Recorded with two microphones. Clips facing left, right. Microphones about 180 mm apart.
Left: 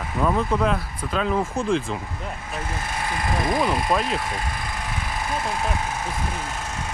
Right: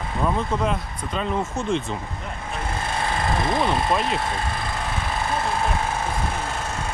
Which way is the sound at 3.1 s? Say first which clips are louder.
Even; 30° right (ahead or behind).